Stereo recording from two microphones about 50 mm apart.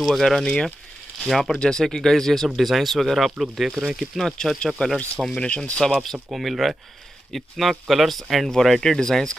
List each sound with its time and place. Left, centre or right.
0.0 s speech: centre
0.5 s speech: left
1.2 s speech: centre
4.3 s speech: centre
6.3 s speech: centre